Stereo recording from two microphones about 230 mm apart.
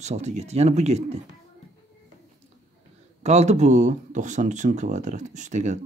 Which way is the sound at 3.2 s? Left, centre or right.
Right.